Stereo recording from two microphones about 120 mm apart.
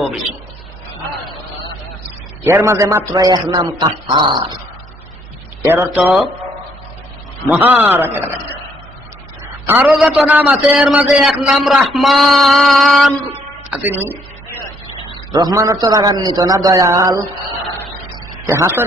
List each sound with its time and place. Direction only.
2.4 s a man's voice: 20° right (ahead or behind); by 4.6 s 40° right (ahead or behind)
5.6 s a man's voice: 20° right (ahead or behind)
7.4 s a man's voice: 15° right (ahead or behind)
9.7 s a man's voice: 15° right (ahead or behind); by 13.1 s centre (ahead or behind)
13.3 s music: 15° right (ahead or behind)
15.3 s a man's voice: 30° right (ahead or behind)
18.3 s a man's voice: 25° right (ahead or behind)